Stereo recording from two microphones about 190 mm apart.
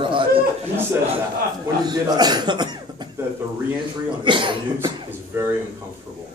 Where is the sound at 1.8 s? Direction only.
20° right (ahead or behind).